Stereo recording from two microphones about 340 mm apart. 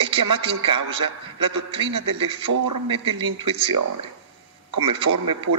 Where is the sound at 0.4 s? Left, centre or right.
Centre.